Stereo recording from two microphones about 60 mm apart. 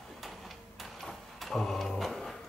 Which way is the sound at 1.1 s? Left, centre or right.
Centre.